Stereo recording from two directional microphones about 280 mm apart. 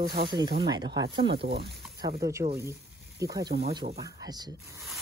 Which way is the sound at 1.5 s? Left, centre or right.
Right.